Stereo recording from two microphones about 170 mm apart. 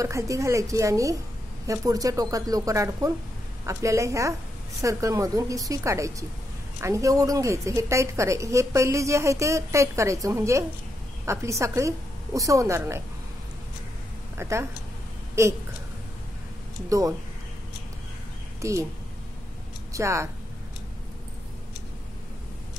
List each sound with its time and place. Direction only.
0.0 s a woman's voice: 20° right (ahead or behind)
14.3 s a woman's voice: 15° right (ahead or behind)
18.6 s speech: 15° right (ahead or behind)
19.9 s speech: 15° right (ahead or behind)